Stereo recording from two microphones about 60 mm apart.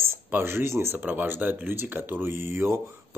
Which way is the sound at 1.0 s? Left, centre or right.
Right.